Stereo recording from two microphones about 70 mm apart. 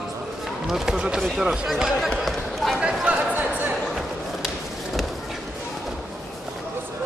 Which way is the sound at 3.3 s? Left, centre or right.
Right.